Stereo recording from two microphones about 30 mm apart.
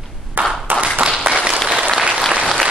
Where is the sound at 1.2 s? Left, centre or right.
Right.